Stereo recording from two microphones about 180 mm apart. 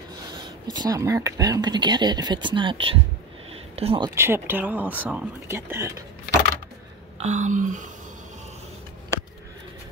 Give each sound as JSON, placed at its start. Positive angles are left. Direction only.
{"t": 0.4, "sound": "speech", "side_deg": -25}
{"t": 4.1, "sound": "speech", "side_deg": -15}
{"t": 7.2, "sound": "speech", "side_deg": -40}